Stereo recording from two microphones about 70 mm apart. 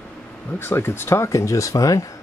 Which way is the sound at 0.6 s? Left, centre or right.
Left.